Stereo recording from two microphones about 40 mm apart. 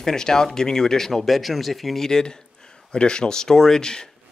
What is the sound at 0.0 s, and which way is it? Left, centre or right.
Speech, centre.